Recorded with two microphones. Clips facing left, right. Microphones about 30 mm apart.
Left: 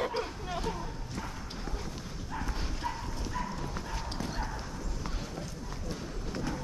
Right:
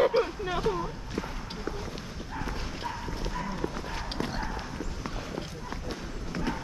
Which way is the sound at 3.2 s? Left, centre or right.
Right.